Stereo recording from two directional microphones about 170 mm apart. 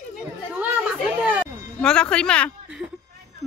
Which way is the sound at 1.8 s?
5° left (ahead or behind).